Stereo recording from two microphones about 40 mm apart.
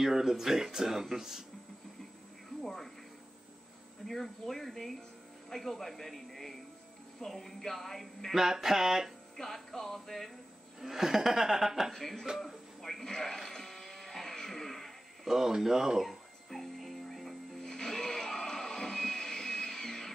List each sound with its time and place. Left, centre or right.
0.0 s speech: centre
2.6 s television: centre
4.0 s speech: centre
8.4 s speech: centre
9.4 s speech: centre
10.8 s speech: centre
12.8 s a sound: centre
15.2 s speech: centre
16.1 s music: centre